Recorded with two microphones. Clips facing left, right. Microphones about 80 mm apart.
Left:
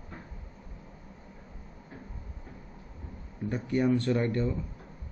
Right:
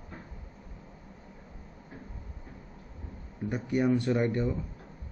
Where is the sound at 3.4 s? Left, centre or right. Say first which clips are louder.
Even; centre.